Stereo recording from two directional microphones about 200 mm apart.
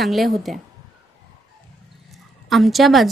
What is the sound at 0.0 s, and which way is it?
Speech, centre (ahead or behind).